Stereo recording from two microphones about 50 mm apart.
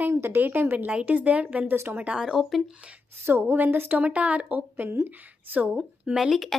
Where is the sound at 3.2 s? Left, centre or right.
Right.